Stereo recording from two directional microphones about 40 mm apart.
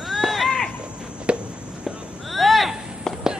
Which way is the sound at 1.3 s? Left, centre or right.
Right.